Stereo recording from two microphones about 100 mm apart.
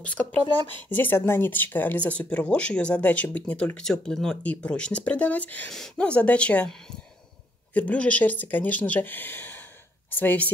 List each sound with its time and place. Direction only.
0.0 s speech: 15° left (ahead or behind)
7.7 s speech: 15° left (ahead or behind)